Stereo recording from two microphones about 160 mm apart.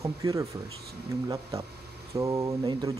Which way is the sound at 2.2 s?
20° right (ahead or behind).